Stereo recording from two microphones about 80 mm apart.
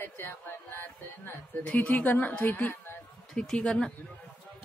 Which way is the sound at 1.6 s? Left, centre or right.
Centre.